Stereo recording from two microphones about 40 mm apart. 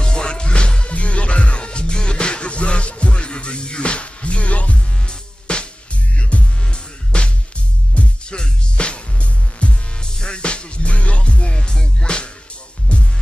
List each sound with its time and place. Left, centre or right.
0.0 s music: centre; by 4.7 s left
4.7 s music: left